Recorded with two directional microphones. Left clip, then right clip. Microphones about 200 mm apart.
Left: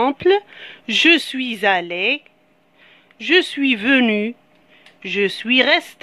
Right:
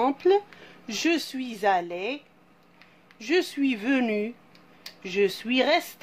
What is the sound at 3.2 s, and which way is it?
Speech, 35° left (ahead or behind).